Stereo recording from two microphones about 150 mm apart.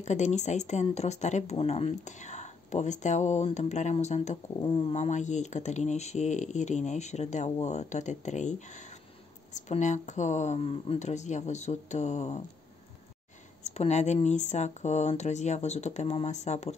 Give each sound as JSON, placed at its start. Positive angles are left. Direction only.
{"t": 0.0, "sound": "speech", "side_deg": 50}
{"t": 4.6, "sound": "speech", "side_deg": 35}
{"t": 4.9, "sound": "speech", "side_deg": 50}
{"t": 13.7, "sound": "speech", "side_deg": 50}